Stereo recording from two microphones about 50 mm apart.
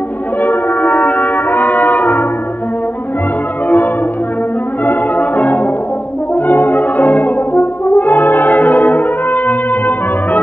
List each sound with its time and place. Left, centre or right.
0.4 s brass instrument: left
3.6 s music: left
4.8 s brass instrument: left